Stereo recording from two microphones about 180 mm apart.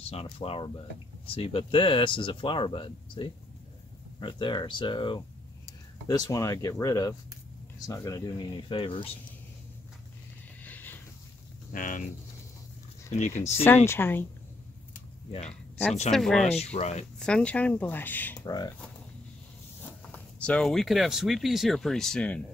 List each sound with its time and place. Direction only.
0.1 s speech: 30° left (ahead or behind)
10.6 s a sound: 10° left (ahead or behind)
11.7 s speech: 45° left (ahead or behind)
13.1 s speech: 40° left (ahead or behind)
13.8 s speech: 10° left (ahead or behind)
16.1 s speech: centre (ahead or behind)
16.7 s speech: 40° left (ahead or behind)
17.2 s speech: 5° left (ahead or behind)
18.5 s speech: 20° left (ahead or behind)
20.1 s speech: 5° left (ahead or behind)